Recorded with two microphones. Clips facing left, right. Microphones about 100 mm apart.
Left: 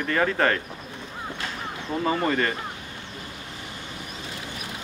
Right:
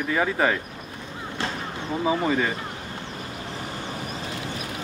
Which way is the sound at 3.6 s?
40° right (ahead or behind).